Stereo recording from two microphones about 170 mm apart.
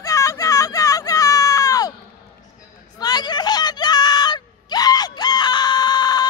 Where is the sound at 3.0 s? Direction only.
25° left (ahead or behind).